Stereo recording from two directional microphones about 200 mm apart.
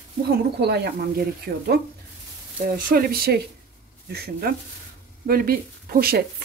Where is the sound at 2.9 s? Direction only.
50° right (ahead or behind).